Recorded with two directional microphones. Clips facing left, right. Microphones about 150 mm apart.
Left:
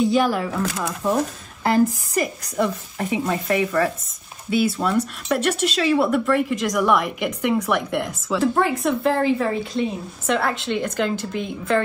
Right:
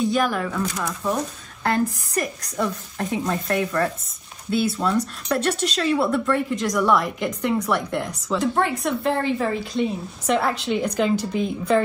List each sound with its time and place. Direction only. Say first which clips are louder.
0.1 s speech: left 3 dB; 5° left (ahead or behind)